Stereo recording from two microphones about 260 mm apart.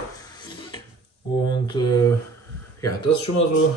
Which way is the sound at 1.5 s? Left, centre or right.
Centre.